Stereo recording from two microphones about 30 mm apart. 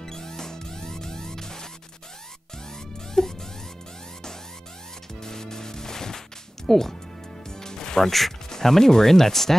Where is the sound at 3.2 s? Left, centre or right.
Centre.